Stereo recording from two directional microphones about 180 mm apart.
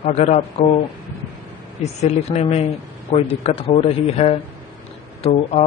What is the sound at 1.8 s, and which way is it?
Speech, 35° left (ahead or behind).